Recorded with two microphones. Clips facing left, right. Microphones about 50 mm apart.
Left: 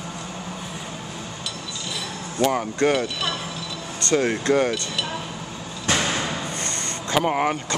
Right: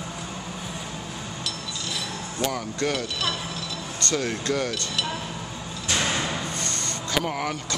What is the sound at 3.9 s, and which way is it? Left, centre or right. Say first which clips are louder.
Speech: left 6 dB; left.